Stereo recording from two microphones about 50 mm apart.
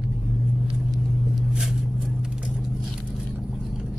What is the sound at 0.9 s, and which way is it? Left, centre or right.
Vehicle, centre.